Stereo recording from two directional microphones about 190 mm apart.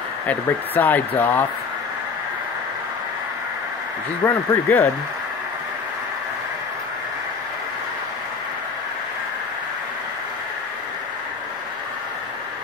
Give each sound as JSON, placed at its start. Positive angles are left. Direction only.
{"t": 0.3, "sound": "speech", "side_deg": 10}
{"t": 4.2, "sound": "speech", "side_deg": 10}